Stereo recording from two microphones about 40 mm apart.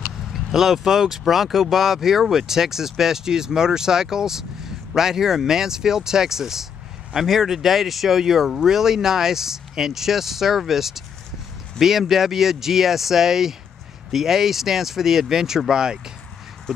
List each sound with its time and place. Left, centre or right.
0.2 s speech: centre